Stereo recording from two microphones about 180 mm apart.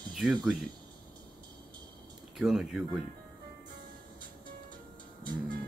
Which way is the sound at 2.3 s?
5° right (ahead or behind).